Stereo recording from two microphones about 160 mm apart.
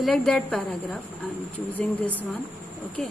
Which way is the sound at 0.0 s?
5° left (ahead or behind).